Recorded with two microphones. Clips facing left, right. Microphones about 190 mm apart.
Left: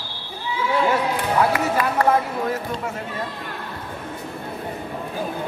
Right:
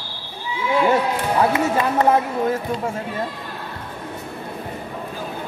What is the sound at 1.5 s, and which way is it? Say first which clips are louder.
Music: right 2 dB; 25° right (ahead or behind).